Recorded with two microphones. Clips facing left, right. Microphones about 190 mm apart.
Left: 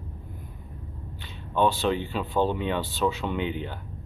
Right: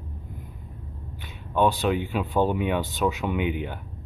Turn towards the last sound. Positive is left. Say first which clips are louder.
# right 2 dB
turn(degrees=-10)  # may be behind; listen again after turning